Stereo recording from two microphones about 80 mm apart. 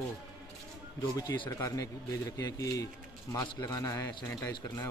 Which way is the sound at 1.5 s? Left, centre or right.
Left.